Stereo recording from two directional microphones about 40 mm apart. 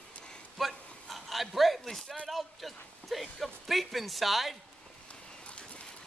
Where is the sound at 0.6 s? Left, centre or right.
Centre.